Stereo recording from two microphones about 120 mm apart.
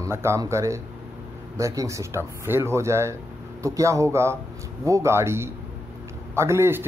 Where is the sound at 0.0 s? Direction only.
20° right (ahead or behind).